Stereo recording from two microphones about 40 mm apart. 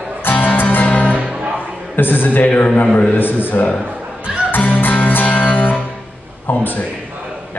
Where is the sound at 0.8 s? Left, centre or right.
Left.